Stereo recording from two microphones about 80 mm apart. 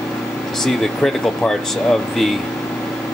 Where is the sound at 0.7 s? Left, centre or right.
Centre.